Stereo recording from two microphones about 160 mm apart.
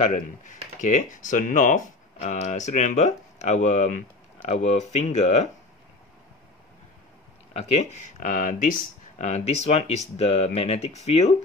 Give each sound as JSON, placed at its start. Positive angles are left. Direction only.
{"t": 0.0, "sound": "speech", "side_deg": 50}
{"t": 7.5, "sound": "speech", "side_deg": 40}
{"t": 8.3, "sound": "speech", "side_deg": 60}
{"t": 9.2, "sound": "speech", "side_deg": 45}